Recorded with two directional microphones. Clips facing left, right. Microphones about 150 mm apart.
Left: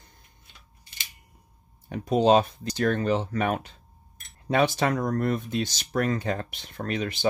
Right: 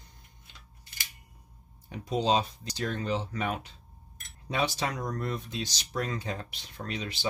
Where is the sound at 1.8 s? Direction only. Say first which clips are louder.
Left 7 dB; 60° left (ahead or behind).